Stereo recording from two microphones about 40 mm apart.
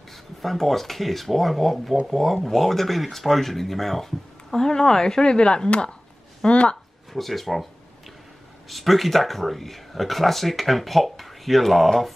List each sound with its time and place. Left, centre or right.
0.1 s speech: centre; by 6.8 s left
7.1 s speech: centre
8.6 s speech: centre